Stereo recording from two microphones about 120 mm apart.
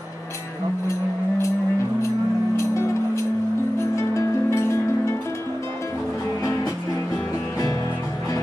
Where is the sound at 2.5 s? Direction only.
25° left (ahead or behind).